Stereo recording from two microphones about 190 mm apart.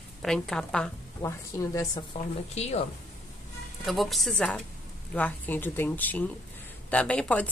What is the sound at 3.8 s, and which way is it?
A woman's voice, centre (ahead or behind).